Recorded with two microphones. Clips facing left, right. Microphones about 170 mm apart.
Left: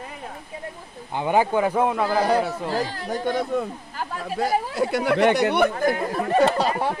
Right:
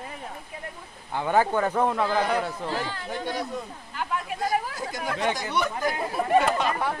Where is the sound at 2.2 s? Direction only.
35° left (ahead or behind); by 4.0 s 55° left (ahead or behind).